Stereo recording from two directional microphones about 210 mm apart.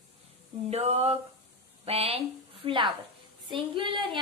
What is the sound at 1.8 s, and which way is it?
A woman's voice, 25° right (ahead or behind).